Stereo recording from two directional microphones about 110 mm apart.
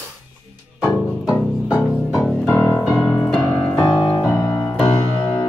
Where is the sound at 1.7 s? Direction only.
5° right (ahead or behind).